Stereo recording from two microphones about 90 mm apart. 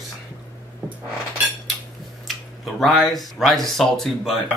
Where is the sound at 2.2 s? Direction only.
Centre (ahead or behind).